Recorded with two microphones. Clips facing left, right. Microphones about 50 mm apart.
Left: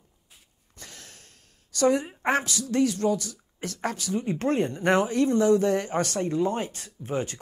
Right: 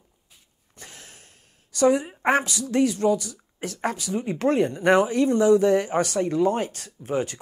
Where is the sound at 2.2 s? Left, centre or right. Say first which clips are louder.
Right 5 dB; right.